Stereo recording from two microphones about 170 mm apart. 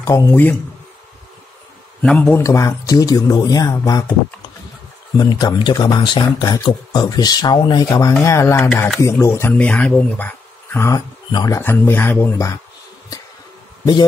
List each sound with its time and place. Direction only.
0.0 s speech: 15° left (ahead or behind)
2.0 s speech: 10° left (ahead or behind)
5.1 s speech: 25° left (ahead or behind)